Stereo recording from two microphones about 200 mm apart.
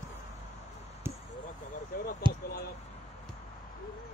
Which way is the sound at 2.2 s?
25° right (ahead or behind).